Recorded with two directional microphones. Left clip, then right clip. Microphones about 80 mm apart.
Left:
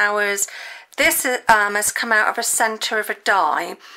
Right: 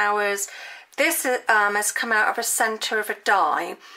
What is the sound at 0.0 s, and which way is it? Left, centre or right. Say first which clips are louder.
A woman's voice: left 3 dB; left.